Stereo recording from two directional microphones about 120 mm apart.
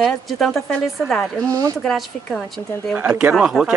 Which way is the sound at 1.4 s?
30° right (ahead or behind).